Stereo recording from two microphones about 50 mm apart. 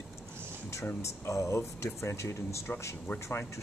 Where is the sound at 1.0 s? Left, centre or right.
Left.